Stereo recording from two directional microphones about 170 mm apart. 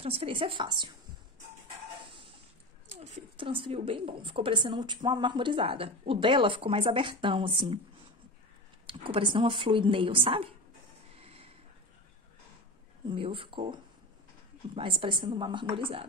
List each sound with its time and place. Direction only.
0.0 s a woman's voice: 35° right (ahead or behind)
2.9 s a woman's voice: 40° right (ahead or behind)
8.8 s a woman's voice: 30° right (ahead or behind)
11.1 s a sound: 35° right (ahead or behind)
13.1 s a woman's voice: 30° right (ahead or behind)
14.8 s a woman's voice: 30° right (ahead or behind)